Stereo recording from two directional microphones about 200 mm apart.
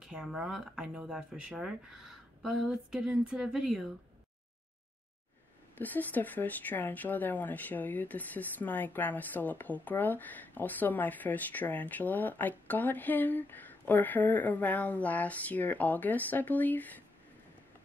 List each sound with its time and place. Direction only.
0.0 s speech: centre (ahead or behind)
5.8 s speech: 10° left (ahead or behind)